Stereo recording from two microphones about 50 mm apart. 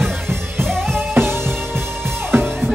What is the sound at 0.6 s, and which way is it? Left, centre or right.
Music, centre.